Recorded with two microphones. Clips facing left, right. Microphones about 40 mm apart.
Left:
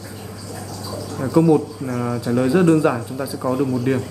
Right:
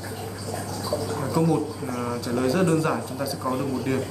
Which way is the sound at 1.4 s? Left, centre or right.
Centre.